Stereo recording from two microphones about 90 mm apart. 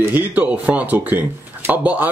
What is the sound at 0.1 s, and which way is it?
A man's voice, 15° right (ahead or behind).